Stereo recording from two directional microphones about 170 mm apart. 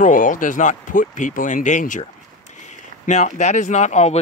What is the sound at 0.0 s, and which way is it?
Speech, 50° left (ahead or behind).